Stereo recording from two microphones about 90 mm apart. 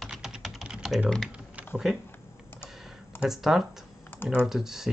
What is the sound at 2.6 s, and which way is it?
Computer keyboard, 5° right (ahead or behind).